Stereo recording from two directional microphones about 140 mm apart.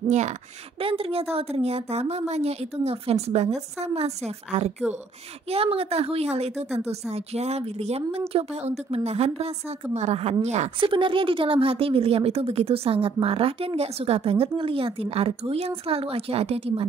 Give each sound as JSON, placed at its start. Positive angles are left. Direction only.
{"t": 0.7, "sound": "speech", "side_deg": -40}
{"t": 10.9, "sound": "speech", "side_deg": -35}